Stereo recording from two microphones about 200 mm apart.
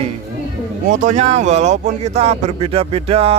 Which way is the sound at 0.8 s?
35° right (ahead or behind).